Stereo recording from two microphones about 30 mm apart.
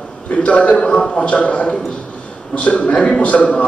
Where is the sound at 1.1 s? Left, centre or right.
Left.